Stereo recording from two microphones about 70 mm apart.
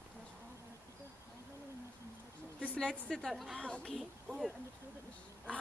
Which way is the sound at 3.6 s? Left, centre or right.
Centre.